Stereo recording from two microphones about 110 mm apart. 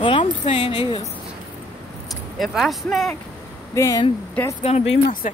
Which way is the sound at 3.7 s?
30° left (ahead or behind).